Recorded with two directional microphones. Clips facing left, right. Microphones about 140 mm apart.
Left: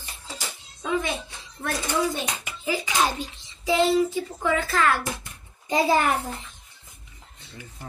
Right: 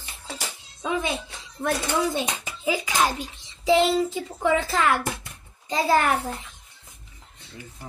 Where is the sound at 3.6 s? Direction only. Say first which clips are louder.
Right 1 dB; 20° right (ahead or behind).